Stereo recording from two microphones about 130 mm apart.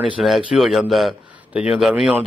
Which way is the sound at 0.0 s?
Centre (ahead or behind).